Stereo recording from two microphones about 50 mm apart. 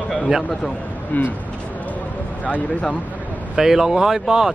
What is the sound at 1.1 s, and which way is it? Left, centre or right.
Speech, left.